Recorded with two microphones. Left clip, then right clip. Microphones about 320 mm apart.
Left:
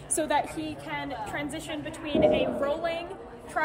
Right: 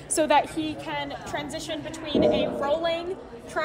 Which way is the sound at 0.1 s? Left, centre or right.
Right.